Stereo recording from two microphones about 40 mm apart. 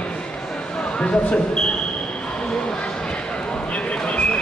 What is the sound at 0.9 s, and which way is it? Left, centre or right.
Speech, left.